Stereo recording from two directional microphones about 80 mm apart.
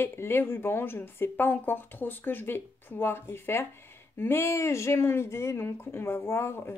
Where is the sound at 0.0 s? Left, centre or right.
Left.